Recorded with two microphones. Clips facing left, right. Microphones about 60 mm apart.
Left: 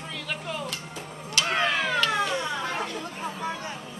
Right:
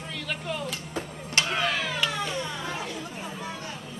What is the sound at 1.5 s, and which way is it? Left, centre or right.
Cat, left.